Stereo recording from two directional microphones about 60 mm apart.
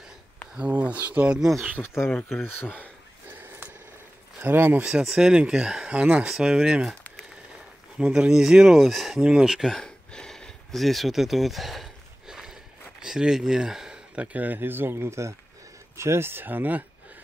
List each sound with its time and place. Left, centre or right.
0.6 s speech: right
4.4 s speech: right
5.0 s speech: centre; by 6.2 s right
6.2 s speech: centre
8.0 s speech: centre
8.7 s speech: centre
9.2 s speech: centre
9.7 s a sound: centre
13.0 s speech: centre
14.1 s speech: right